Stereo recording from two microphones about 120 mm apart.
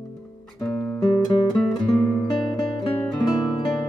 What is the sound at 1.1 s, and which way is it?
Music, 40° left (ahead or behind).